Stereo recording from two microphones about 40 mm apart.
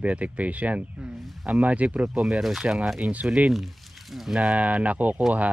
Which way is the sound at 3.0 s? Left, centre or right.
Right.